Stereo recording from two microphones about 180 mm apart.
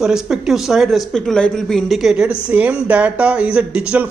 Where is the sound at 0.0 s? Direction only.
5° right (ahead or behind).